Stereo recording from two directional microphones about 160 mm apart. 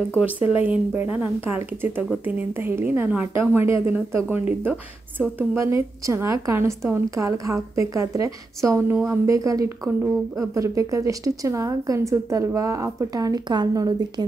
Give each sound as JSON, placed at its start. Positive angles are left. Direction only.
{"t": 0.2, "sound": "a woman's voice", "side_deg": -10}
{"t": 5.6, "sound": "a woman's voice", "side_deg": -20}